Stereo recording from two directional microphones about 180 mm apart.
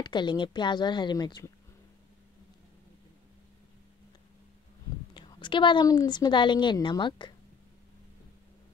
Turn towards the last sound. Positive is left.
turn(degrees=25)  # may be behind; listen again after turning